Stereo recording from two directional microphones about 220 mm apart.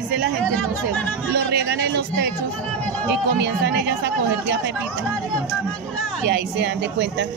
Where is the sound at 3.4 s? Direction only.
50° right (ahead or behind).